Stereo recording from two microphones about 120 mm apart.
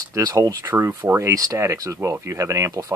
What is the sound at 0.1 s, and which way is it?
Speech, 25° right (ahead or behind).